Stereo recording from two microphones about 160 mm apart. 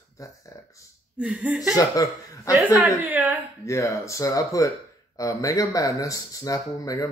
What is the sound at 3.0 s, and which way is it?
Speech, 10° right (ahead or behind).